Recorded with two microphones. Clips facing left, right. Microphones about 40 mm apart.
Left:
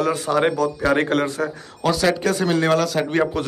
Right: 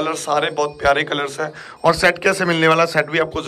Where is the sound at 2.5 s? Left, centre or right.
Right.